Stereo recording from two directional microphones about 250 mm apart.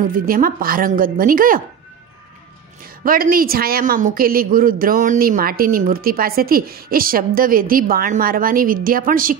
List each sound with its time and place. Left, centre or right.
0.0 s speech: right
3.0 s speech: right